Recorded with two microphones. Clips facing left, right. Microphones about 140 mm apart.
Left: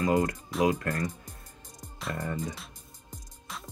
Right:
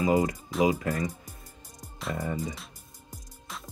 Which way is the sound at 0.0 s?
5° right (ahead or behind).